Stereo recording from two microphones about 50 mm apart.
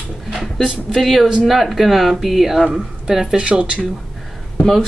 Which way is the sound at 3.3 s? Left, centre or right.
Right.